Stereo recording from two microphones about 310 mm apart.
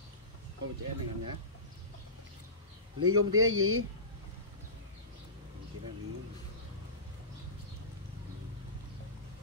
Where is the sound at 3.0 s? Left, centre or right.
Right.